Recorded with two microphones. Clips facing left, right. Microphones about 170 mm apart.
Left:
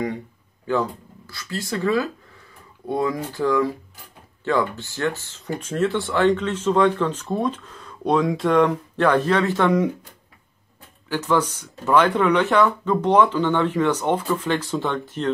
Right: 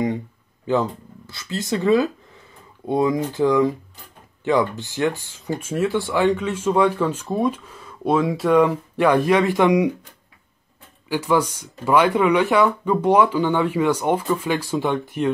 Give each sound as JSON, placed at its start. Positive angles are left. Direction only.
{"t": 0.7, "sound": "speech", "side_deg": -20}
{"t": 5.4, "sound": "speech", "side_deg": -5}
{"t": 11.1, "sound": "speech", "side_deg": -10}